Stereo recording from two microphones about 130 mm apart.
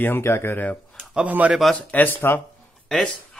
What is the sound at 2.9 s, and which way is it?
Speech, 5° left (ahead or behind).